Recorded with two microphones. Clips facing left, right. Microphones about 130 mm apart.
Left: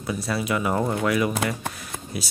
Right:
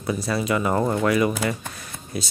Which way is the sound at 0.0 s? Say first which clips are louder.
Right 2 dB; centre (ahead or behind).